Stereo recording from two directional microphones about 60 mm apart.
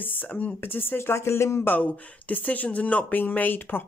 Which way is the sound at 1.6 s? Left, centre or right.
Left.